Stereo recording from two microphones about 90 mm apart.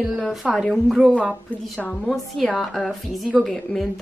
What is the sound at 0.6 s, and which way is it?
A woman's voice, centre (ahead or behind).